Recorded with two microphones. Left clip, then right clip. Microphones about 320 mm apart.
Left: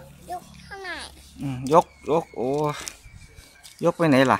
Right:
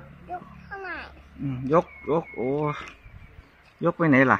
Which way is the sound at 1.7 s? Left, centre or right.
Centre.